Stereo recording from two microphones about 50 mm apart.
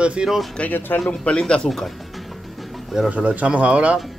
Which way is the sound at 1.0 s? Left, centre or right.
Left.